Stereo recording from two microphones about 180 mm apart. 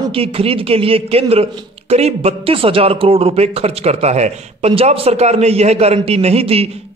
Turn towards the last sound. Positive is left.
turn(degrees=-35)  # may be behind; listen again after turning